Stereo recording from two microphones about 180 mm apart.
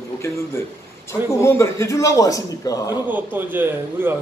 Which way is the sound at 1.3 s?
15° left (ahead or behind).